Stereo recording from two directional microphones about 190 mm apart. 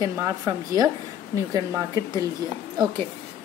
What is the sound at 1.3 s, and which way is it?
Speech, 15° right (ahead or behind).